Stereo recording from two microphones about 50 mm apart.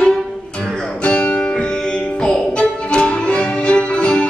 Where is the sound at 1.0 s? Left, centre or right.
Left.